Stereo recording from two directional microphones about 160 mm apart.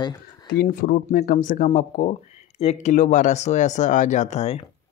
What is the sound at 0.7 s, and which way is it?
Speech, 60° left (ahead or behind).